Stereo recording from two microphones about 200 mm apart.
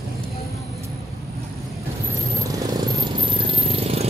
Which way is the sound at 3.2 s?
25° right (ahead or behind).